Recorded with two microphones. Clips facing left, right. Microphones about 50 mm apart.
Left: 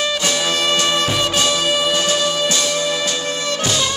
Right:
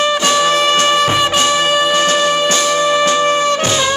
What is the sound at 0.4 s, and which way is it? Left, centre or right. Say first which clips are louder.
Music: right 6 dB; right.